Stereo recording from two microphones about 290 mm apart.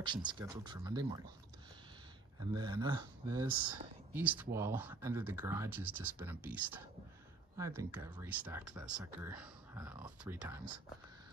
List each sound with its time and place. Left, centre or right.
0.0 s speech: centre
2.5 s speech: centre
4.2 s speech: centre